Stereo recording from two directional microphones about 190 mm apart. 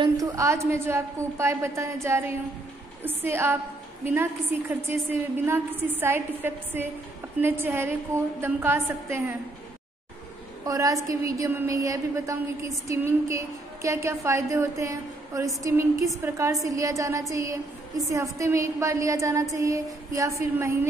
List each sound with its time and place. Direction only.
0.0 s a woman's voice: 15° right (ahead or behind)
10.6 s a woman's voice: 20° right (ahead or behind)